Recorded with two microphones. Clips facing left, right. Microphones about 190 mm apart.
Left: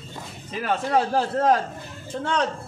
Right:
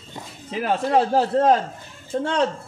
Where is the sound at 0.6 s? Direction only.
25° right (ahead or behind).